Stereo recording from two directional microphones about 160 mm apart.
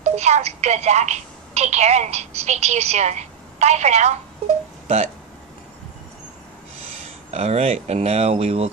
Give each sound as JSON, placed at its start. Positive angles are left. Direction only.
{"t": 0.0, "sound": "a woman's voice", "side_deg": -45}
{"t": 6.9, "sound": "speech", "side_deg": -40}